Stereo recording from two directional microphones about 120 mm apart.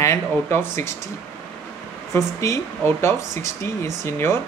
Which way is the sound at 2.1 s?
25° left (ahead or behind).